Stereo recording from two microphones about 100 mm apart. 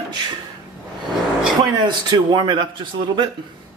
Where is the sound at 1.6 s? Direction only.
45° right (ahead or behind).